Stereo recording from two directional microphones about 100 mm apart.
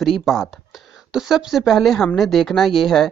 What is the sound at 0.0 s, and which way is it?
Speech, centre (ahead or behind).